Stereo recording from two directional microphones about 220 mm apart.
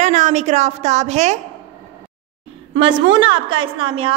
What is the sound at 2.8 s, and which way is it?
A woman's voice, 20° right (ahead or behind).